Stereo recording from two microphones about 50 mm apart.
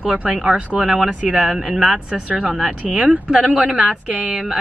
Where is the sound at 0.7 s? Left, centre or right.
Right; by 2.7 s centre.